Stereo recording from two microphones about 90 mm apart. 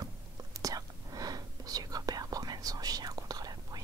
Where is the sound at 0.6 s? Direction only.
40° right (ahead or behind).